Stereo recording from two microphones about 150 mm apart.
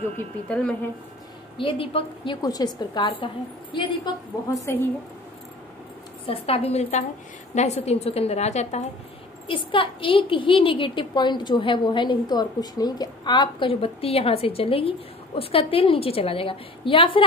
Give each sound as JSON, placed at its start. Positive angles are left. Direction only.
{"t": 0.5, "sound": "speech", "side_deg": 10}
{"t": 1.6, "sound": "a woman's voice", "side_deg": 35}
{"t": 2.4, "sound": "a woman's voice", "side_deg": 25}
{"t": 4.7, "sound": "speech", "side_deg": 20}
{"t": 6.2, "sound": "a woman's voice", "side_deg": 40}
{"t": 9.7, "sound": "a woman's voice", "side_deg": 35}